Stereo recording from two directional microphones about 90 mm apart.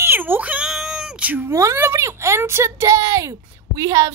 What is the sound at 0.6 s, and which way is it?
Cat, centre (ahead or behind).